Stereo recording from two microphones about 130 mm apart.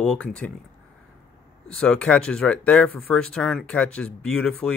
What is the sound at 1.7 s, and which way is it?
Speech, 5° left (ahead or behind).